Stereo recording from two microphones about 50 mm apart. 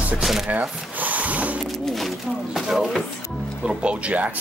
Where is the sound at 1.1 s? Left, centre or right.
Right.